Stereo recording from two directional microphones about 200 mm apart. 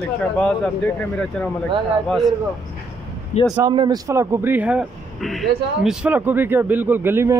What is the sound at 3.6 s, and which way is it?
Speech, 20° right (ahead or behind).